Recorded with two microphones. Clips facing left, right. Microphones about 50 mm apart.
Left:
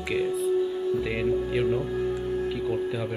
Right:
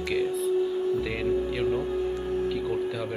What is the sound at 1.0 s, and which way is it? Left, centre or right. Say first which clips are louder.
Speech: left 1 dB; centre.